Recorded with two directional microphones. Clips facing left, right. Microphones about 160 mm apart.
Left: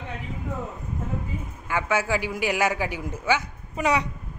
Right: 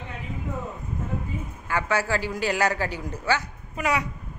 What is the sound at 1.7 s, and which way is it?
A man's voice, 15° left (ahead or behind).